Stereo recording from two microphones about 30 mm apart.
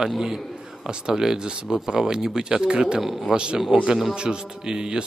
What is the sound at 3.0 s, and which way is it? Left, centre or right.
Speech, centre.